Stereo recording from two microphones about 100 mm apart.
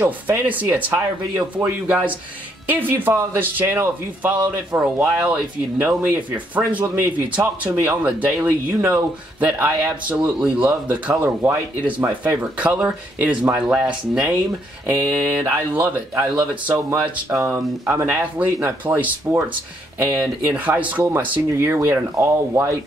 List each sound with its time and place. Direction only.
0.0 s speech: 15° right (ahead or behind)
14.9 s speech: 25° right (ahead or behind)